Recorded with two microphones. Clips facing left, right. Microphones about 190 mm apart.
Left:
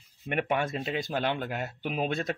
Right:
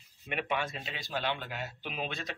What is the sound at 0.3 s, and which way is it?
Speech, 50° left (ahead or behind).